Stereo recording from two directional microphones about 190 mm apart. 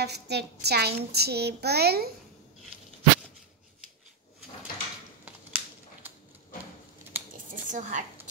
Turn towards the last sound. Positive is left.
turn(degrees=-40)  # may be behind; listen again after turning